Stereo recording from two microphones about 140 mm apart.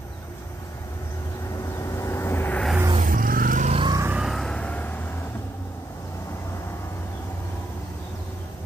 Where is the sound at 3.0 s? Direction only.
85° right.